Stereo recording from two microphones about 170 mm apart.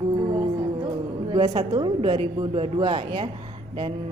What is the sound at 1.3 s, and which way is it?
A woman's voice, 30° right (ahead or behind).